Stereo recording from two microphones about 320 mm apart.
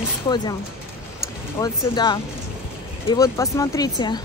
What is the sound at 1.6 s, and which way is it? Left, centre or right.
Speech, centre.